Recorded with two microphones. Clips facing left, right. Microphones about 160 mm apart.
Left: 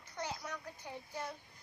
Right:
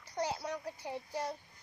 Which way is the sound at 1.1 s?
35° right (ahead or behind).